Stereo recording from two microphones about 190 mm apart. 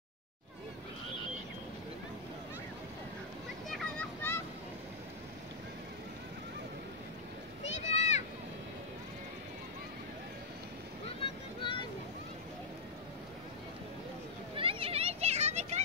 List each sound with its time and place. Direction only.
3.6 s vehicle: centre (ahead or behind)
7.8 s a sound: 35° left (ahead or behind)
11.1 s vehicle: 25° left (ahead or behind)
14.6 s children playing: 30° right (ahead or behind)